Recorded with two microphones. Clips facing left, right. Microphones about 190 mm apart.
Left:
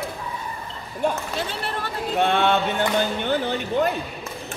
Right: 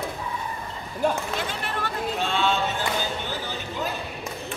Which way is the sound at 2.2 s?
60° left (ahead or behind).